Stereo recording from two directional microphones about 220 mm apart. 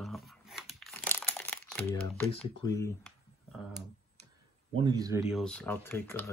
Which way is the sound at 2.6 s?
15° left (ahead or behind).